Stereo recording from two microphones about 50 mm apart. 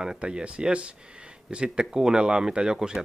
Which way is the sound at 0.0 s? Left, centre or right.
Centre.